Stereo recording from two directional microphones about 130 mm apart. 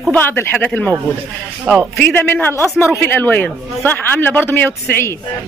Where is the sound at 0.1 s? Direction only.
15° left (ahead or behind).